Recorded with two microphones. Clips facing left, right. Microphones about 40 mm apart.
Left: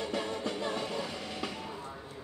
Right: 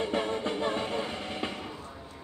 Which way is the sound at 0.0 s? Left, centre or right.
Right.